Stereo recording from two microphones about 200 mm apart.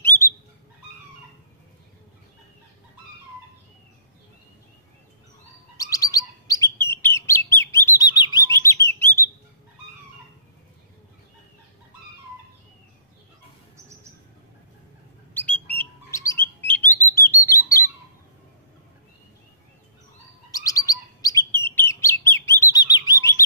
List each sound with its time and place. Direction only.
0.0 s bird: 10° left (ahead or behind)
5.8 s bird: 15° left (ahead or behind)
8.5 s chirp: 15° left (ahead or behind)
15.3 s bird: 10° left (ahead or behind)
20.5 s bird: 15° left (ahead or behind)